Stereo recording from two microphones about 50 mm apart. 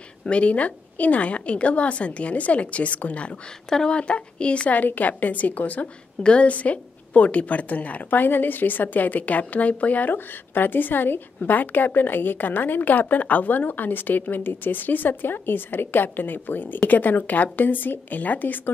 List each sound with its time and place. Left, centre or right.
0.3 s a woman's voice: left